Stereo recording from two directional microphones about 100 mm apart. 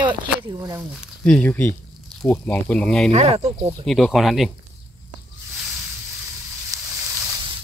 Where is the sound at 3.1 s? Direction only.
85° right.